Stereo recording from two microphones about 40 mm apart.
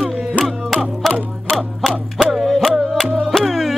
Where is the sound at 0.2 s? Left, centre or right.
Right.